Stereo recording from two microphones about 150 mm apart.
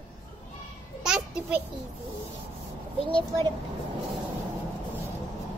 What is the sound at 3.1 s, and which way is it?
Speech, 35° right (ahead or behind).